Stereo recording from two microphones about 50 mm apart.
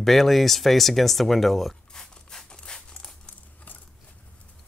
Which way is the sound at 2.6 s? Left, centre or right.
Centre.